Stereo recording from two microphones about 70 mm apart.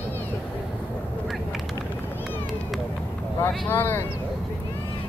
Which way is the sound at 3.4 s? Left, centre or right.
Left.